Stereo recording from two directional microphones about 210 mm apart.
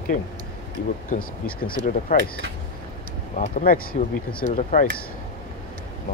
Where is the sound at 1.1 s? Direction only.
40° left (ahead or behind).